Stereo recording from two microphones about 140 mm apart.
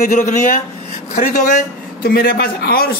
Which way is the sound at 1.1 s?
80° left.